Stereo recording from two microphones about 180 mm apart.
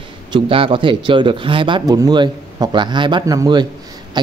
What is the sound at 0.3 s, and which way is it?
Speech, 30° right (ahead or behind).